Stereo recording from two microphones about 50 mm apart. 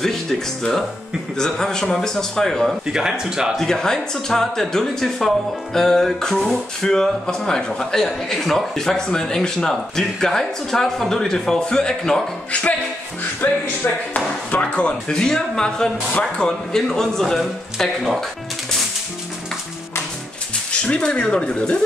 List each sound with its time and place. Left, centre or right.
0.0 s a man's voice: centre
2.9 s speech: centre
3.5 s a man's voice: centre
13.4 s speech: left
14.1 s speech: left
15.0 s a man's voice: centre
20.8 s a man's voice: centre